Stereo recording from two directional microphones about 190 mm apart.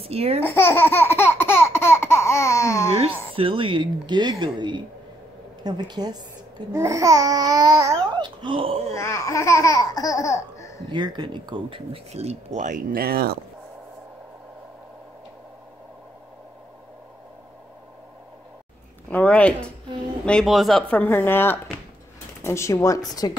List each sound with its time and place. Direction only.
0.0 s speech: 30° right (ahead or behind)
0.4 s laughter: 10° left (ahead or behind)
3.3 s speech: 30° right (ahead or behind)
8.9 s speech: 15° left (ahead or behind)
10.9 s speech: 25° right (ahead or behind); by 13.4 s 55° right (ahead or behind)
19.0 s speech: 5° left (ahead or behind)